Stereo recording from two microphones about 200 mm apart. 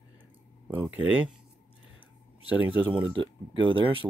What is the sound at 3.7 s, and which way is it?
Speech, 25° right (ahead or behind).